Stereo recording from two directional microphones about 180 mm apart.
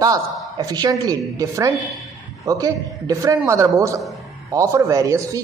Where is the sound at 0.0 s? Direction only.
20° right (ahead or behind).